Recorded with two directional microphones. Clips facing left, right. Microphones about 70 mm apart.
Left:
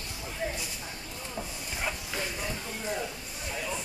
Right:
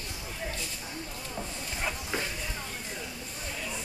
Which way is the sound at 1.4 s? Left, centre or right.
Centre.